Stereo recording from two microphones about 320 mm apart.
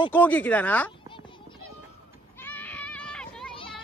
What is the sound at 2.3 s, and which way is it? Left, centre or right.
Children playing, centre.